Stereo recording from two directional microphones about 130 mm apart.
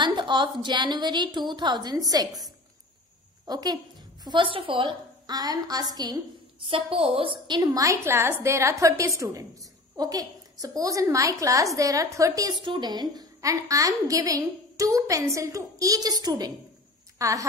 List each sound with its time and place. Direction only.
0.0 s a woman's voice: 35° right (ahead or behind)
3.4 s a woman's voice: 30° right (ahead or behind)
6.7 s a woman's voice: 45° right (ahead or behind); by 17.5 s 25° right (ahead or behind)